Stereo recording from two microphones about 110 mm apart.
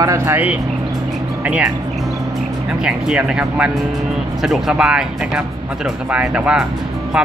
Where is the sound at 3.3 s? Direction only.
10° right (ahead or behind).